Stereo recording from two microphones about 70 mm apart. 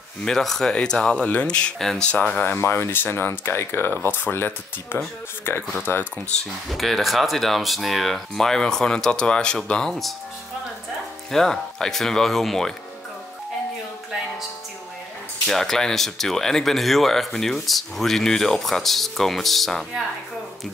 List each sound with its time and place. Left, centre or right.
0.2 s speech: centre
2.6 s speech: left
6.7 s speech: centre
11.3 s speech: centre
15.4 s speech: centre